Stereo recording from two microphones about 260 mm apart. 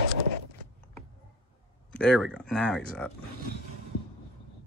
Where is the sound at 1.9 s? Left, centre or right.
Centre.